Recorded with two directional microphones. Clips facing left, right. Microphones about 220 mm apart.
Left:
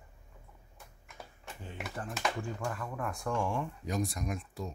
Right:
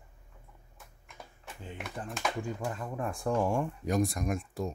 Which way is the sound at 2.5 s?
20° right (ahead or behind).